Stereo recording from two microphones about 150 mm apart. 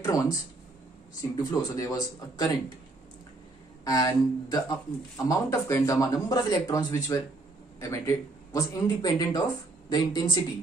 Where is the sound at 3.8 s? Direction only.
25° left (ahead or behind).